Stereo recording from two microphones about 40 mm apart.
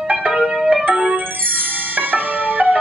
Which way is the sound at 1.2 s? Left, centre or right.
Right.